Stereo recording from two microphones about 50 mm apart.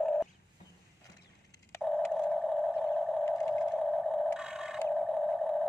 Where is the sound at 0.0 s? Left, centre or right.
Centre.